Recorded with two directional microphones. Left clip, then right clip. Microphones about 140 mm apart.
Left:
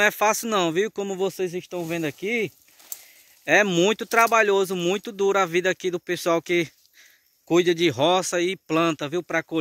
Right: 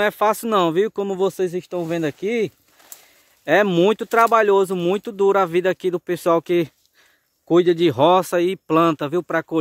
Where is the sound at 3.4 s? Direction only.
30° right (ahead or behind).